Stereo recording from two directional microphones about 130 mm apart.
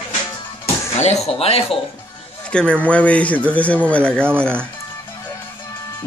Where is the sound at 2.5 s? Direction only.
10° left (ahead or behind).